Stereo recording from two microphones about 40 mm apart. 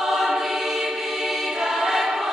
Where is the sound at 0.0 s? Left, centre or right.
Centre.